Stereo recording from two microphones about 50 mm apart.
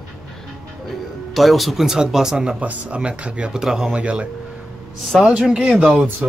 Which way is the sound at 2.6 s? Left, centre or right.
Right.